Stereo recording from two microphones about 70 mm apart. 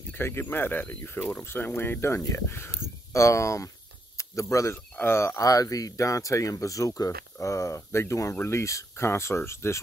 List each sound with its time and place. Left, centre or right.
0.1 s speech: left
4.9 s speech: left
5.5 s speech: left